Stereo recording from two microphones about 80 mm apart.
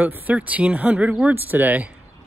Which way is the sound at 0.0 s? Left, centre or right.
Right.